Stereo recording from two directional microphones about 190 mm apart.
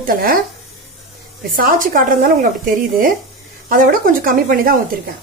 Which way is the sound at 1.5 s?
45° right (ahead or behind).